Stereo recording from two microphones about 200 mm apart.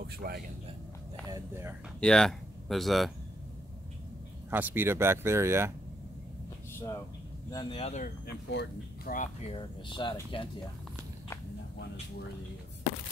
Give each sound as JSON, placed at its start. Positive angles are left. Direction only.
{"t": 0.0, "sound": "a man's voice", "side_deg": -50}
{"t": 1.3, "sound": "speech", "side_deg": -10}
{"t": 2.0, "sound": "speech", "side_deg": 5}
{"t": 4.5, "sound": "speech", "side_deg": -10}
{"t": 7.5, "sound": "speech", "side_deg": 30}
{"t": 8.5, "sound": "speech", "side_deg": 55}
{"t": 9.1, "sound": "speech", "side_deg": 40}
{"t": 9.6, "sound": "speech", "side_deg": 25}